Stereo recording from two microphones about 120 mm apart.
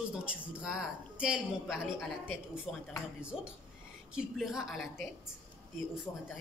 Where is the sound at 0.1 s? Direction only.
10° right (ahead or behind).